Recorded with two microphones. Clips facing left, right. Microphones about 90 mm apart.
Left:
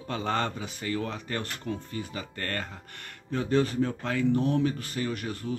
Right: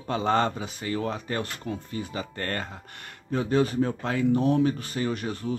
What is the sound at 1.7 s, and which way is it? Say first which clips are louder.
Speech: right 1 dB; 30° right (ahead or behind).